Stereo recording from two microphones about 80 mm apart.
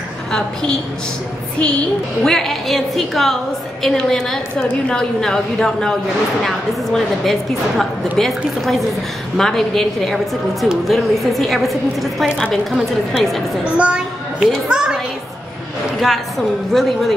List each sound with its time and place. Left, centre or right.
0.3 s a woman's voice: centre
2.2 s a woman's voice: centre
13.7 s a child's voice: centre
16.0 s a woman's voice: centre